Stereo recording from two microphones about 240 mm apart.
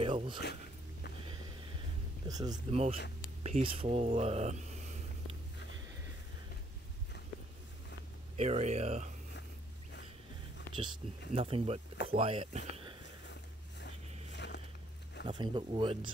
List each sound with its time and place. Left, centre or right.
0.0 s speech: right
2.2 s speech: centre
2.5 s speech: right
8.4 s speech: right
10.8 s speech: right
13.0 s a sound: left
15.2 s speech: centre